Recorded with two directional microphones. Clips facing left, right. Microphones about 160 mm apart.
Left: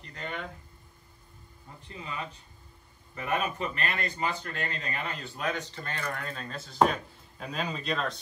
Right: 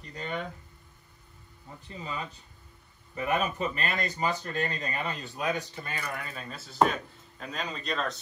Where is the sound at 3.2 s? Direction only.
15° right (ahead or behind).